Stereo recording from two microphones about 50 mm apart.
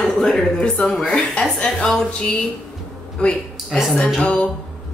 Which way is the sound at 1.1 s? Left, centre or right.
Centre.